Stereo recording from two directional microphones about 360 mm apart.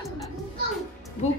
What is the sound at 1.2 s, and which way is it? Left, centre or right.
Speech, centre.